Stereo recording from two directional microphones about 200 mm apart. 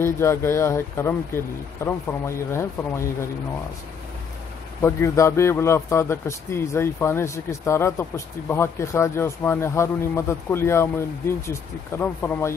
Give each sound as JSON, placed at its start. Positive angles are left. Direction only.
{"t": 0.0, "sound": "a man's voice", "side_deg": 15}
{"t": 4.8, "sound": "a man's voice", "side_deg": 15}